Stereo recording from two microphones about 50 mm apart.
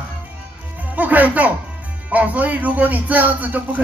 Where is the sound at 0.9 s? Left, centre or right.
Right.